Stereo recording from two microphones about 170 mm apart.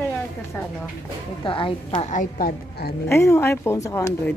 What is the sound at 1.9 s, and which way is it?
Speech, 50° left (ahead or behind).